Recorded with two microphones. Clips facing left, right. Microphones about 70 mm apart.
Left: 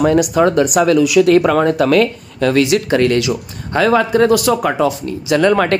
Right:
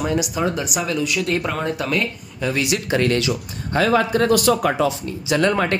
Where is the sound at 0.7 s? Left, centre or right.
Left.